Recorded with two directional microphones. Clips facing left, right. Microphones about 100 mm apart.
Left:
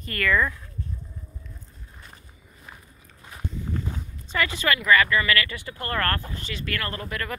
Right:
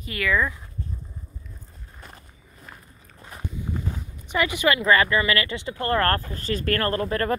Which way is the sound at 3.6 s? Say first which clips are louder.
Right 1 dB; 15° right (ahead or behind).